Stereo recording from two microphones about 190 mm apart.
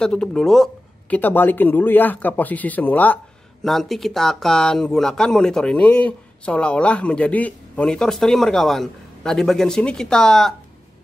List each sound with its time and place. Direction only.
0.0 s speech: 5° left (ahead or behind)